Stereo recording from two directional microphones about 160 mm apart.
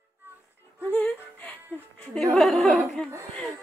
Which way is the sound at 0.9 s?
5° left (ahead or behind).